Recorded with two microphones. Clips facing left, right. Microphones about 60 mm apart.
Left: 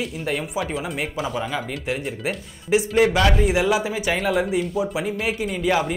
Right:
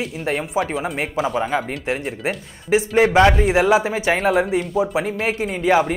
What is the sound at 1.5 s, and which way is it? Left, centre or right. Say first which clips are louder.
A woman's voice: right 4 dB; right.